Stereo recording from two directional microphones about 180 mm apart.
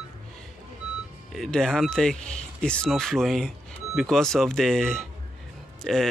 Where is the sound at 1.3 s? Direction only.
5° left (ahead or behind).